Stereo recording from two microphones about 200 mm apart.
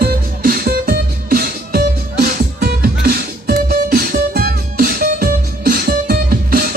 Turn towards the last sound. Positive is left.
turn(degrees=-50)  # may be behind; listen again after turning